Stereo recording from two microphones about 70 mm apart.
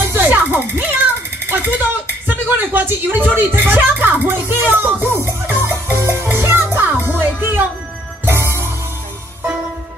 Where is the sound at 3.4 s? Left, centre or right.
Right.